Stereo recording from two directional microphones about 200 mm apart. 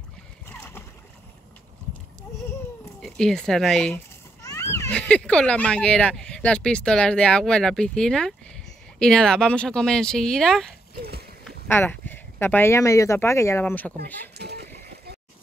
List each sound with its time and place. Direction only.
0.5 s boat: 10° left (ahead or behind)
3.0 s speech: 5° left (ahead or behind)
4.4 s speech: 15° left (ahead or behind)
11.0 s a sound: 50° right (ahead or behind)
11.4 s speech: 10° left (ahead or behind)
14.4 s splash: 55° right (ahead or behind)